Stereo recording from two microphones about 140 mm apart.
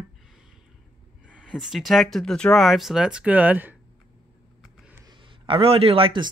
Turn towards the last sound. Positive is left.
turn(degrees=-35)  # may be behind; listen again after turning